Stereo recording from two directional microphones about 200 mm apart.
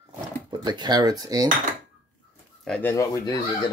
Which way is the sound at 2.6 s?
5° left (ahead or behind).